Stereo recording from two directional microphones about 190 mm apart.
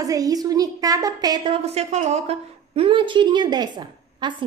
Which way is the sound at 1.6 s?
35° right (ahead or behind).